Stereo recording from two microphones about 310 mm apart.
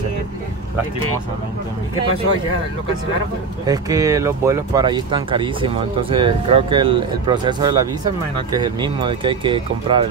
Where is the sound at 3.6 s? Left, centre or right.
Centre.